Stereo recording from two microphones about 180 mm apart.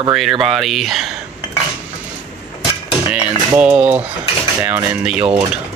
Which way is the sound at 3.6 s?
5° right (ahead or behind).